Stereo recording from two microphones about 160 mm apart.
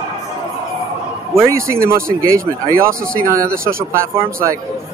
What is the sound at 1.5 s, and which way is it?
Speech, 15° right (ahead or behind).